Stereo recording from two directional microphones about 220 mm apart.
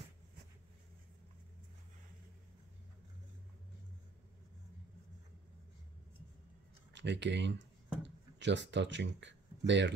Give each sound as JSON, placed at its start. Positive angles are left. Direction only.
{"t": 6.9, "sound": "speech", "side_deg": -55}